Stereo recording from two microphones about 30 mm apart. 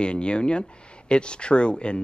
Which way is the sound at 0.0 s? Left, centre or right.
Left.